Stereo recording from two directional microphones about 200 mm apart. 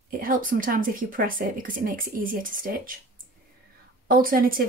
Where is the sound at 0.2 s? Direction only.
45° right (ahead or behind).